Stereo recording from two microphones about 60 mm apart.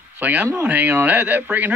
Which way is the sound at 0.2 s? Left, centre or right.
Right.